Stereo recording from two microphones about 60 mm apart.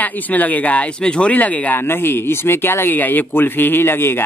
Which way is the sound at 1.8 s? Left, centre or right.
Left.